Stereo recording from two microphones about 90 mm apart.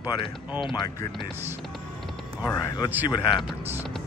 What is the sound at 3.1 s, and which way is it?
Speech, 60° left (ahead or behind).